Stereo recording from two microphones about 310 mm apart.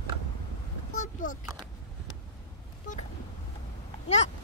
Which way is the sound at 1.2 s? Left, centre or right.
Left.